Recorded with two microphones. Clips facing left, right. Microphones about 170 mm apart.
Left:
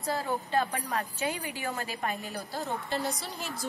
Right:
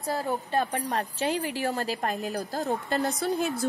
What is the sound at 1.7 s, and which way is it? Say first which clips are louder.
A woman's voice: right 5 dB; 40° right (ahead or behind).